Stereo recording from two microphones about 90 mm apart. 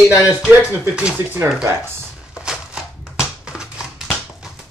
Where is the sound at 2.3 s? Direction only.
5° right (ahead or behind).